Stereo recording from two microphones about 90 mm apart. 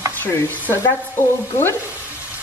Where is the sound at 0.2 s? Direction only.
20° left (ahead or behind).